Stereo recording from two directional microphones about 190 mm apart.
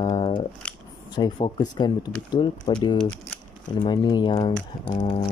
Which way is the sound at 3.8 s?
25° left (ahead or behind).